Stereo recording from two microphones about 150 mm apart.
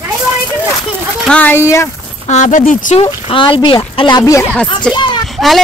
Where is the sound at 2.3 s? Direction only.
55° left (ahead or behind).